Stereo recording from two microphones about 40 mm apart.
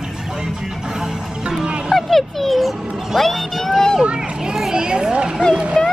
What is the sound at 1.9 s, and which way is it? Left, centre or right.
Music, centre.